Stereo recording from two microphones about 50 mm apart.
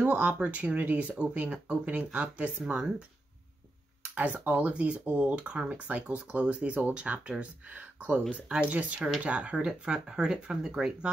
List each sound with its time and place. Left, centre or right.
0.1 s speech: right
4.0 s speech: right